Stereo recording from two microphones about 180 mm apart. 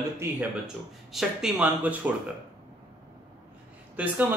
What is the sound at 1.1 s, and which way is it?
Speech, 5° right (ahead or behind).